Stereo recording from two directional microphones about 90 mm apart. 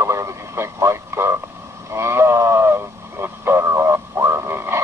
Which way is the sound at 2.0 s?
30° right (ahead or behind).